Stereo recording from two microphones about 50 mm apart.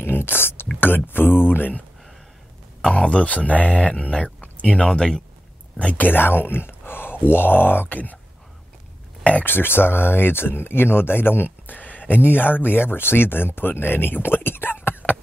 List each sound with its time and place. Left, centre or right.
0.0 s a sound: left
0.7 s speech: left
2.8 s speech: centre
4.8 s speech: centre
5.9 s speech: left
9.4 s speech: left